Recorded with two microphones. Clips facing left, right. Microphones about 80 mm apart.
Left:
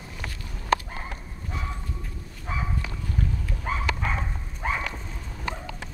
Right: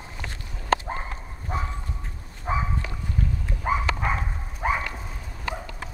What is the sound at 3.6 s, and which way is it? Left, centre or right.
Dog, centre.